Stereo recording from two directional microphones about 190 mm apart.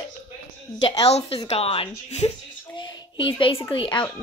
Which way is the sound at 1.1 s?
30° left (ahead or behind).